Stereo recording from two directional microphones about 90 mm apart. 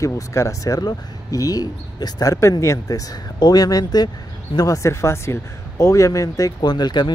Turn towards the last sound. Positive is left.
turn(degrees=55)  # may be behind; listen again after turning